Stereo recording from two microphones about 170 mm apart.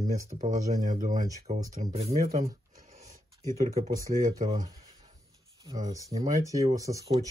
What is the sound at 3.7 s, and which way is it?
Speech, 45° right (ahead or behind).